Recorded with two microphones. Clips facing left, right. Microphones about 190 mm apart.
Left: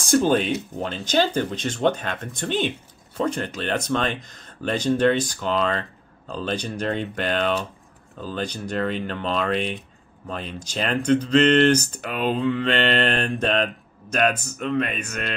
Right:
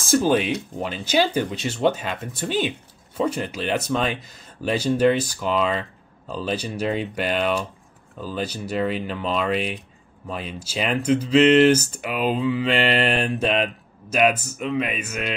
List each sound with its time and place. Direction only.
0.0 s speech: centre (ahead or behind)